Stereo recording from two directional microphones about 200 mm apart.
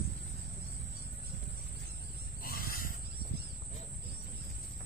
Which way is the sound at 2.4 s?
50° left (ahead or behind).